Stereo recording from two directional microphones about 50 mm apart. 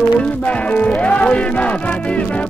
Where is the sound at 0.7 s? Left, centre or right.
Left.